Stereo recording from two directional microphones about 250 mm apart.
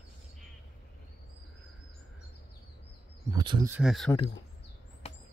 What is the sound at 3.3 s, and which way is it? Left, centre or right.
Speech, centre.